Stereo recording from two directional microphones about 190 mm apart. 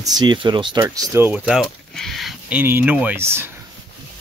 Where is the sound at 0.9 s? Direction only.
15° right (ahead or behind).